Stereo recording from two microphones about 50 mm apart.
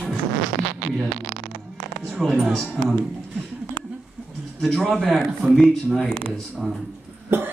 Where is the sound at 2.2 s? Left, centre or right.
Centre.